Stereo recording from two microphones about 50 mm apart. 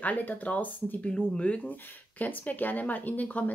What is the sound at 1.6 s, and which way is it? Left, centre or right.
Speech, left.